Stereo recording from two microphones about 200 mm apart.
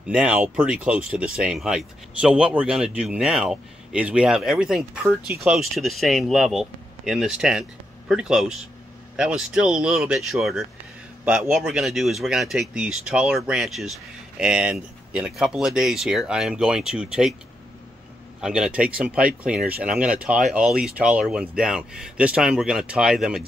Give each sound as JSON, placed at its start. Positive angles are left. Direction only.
{"t": 0.0, "sound": "speech", "side_deg": -5}
{"t": 18.4, "sound": "speech", "side_deg": -5}